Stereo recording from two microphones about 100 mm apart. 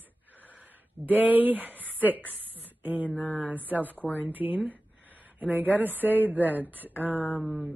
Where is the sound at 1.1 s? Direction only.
15° right (ahead or behind).